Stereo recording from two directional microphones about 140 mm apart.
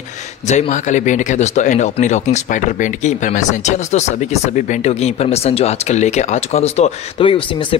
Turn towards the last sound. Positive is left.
turn(degrees=40)  # may be behind; listen again after turning